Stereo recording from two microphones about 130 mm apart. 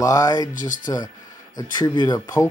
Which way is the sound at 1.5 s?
30° left (ahead or behind).